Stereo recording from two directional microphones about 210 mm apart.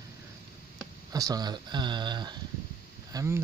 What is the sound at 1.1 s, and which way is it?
Speech, 15° right (ahead or behind).